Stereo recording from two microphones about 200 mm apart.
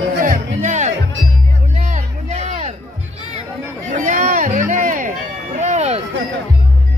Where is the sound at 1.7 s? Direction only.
40° right (ahead or behind).